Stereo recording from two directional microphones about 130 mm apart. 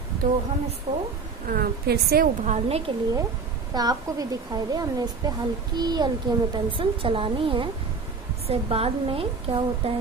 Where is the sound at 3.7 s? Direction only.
30° right (ahead or behind).